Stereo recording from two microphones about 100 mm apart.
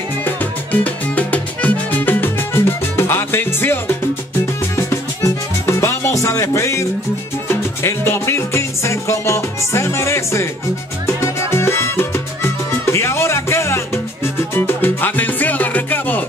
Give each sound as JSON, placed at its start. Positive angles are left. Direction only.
{"t": 0.2, "sound": "music", "side_deg": 15}
{"t": 11.1, "sound": "salsa music", "side_deg": 30}